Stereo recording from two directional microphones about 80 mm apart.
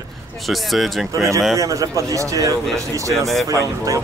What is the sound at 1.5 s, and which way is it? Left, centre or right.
Speech, right.